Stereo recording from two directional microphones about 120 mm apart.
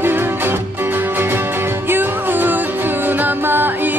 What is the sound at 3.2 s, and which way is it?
Music, 15° right (ahead or behind).